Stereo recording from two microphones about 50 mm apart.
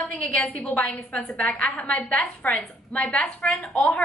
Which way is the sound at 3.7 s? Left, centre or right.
Left.